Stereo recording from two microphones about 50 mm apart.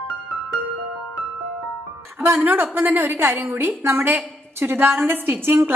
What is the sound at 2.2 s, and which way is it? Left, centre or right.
Speech, right.